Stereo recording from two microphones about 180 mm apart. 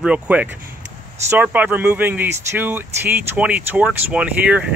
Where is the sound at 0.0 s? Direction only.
5° right (ahead or behind).